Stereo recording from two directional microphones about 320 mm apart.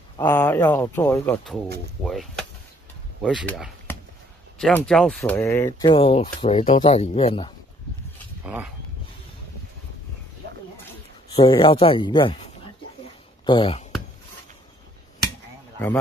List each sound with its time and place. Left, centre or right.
0.2 s speech: centre
11.3 s speech: centre
13.5 s speech: centre